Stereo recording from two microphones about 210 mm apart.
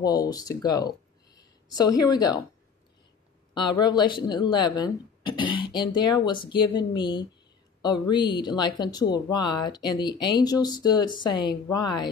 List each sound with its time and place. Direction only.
0.0 s speech: 20° left (ahead or behind)
3.5 s speech: 20° left (ahead or behind)